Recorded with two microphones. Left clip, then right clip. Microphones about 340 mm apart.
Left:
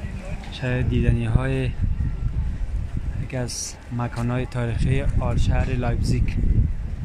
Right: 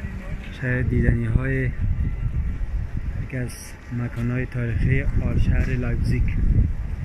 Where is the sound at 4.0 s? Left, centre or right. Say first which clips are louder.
Left 2 dB; left.